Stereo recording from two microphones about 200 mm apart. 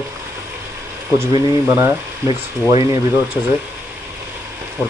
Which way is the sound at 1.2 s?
15° right (ahead or behind).